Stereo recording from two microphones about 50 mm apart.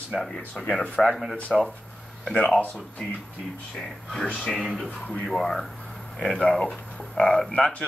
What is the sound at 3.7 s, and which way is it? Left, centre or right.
Speech, centre.